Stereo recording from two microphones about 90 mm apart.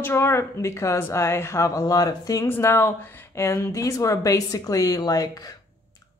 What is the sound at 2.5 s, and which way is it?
Speech, 30° left (ahead or behind).